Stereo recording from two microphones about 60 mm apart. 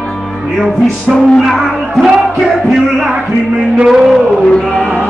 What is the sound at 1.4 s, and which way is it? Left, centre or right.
Music, centre.